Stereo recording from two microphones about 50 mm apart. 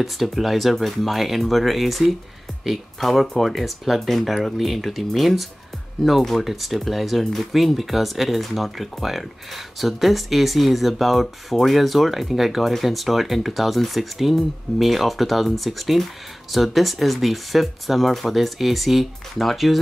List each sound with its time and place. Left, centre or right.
0.0 s speech: centre